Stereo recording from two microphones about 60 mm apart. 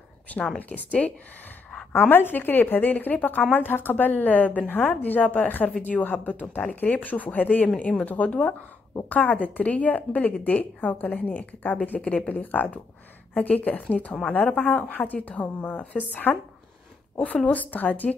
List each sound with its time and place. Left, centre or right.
0.3 s a woman's voice: left
1.9 s a woman's voice: left
17.5 s a woman's voice: left